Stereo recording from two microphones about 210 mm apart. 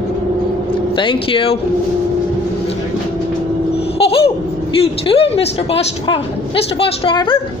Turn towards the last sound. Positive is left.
turn(degrees=25)  # may be behind; listen again after turning